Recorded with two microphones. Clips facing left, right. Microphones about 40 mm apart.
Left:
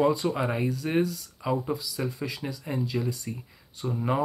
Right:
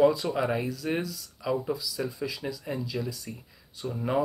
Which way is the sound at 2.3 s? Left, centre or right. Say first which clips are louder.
Even; left.